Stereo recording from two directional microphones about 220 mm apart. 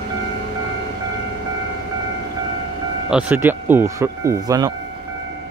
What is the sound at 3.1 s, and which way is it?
Speech, 5° right (ahead or behind).